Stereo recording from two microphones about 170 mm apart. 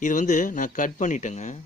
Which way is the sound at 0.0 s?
50° left (ahead or behind).